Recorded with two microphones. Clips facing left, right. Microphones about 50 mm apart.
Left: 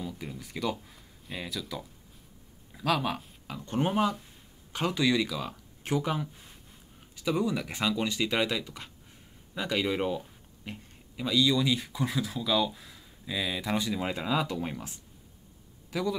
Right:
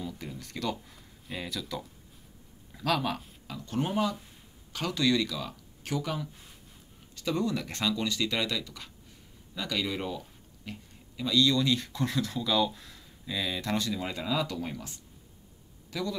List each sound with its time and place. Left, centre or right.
0.0 s a sound: centre
2.7 s speech: centre
3.5 s speech: left
7.2 s a man's voice: centre